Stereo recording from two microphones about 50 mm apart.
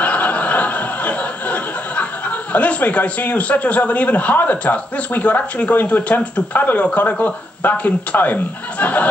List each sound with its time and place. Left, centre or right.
0.0 s chuckle: left
7.0 s speech: left